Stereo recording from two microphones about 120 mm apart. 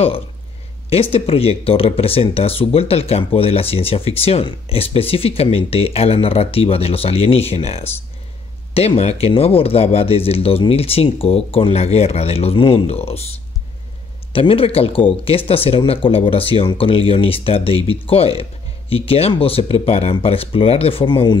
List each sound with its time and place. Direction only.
1.1 s speech: 55° left (ahead or behind)
14.3 s speech: 50° left (ahead or behind)